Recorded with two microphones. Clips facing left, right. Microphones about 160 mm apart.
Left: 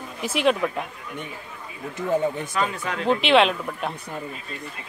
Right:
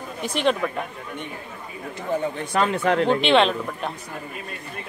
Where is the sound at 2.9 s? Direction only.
35° right (ahead or behind).